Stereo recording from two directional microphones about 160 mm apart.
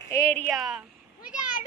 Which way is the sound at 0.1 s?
15° left (ahead or behind).